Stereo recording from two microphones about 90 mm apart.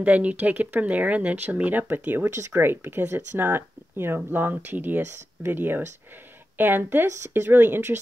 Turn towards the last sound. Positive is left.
turn(degrees=-25)  # may be behind; listen again after turning